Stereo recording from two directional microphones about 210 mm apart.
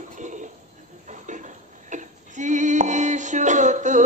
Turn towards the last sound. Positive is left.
turn(degrees=-35)  # may be behind; listen again after turning